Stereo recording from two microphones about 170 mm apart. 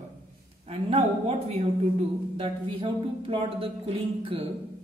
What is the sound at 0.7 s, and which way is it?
Speech, 35° right (ahead or behind).